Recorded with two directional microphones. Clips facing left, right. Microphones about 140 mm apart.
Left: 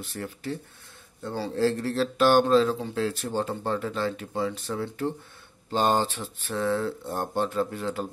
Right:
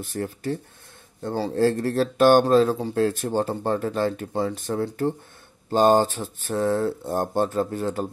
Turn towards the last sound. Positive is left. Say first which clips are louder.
# right 3 dB
turn(degrees=-40)  # may be behind; listen again after turning